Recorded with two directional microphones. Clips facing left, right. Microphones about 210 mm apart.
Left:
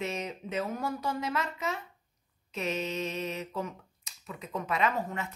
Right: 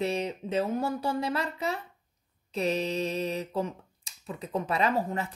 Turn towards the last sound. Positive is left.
turn(degrees=-35)  # may be behind; listen again after turning